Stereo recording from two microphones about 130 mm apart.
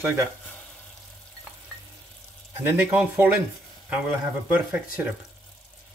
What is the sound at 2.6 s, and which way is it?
Speech, 15° right (ahead or behind).